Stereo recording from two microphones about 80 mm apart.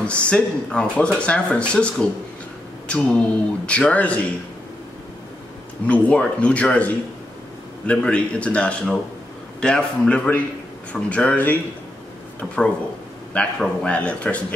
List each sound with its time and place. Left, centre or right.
0.0 s speech: centre
5.9 s speech: centre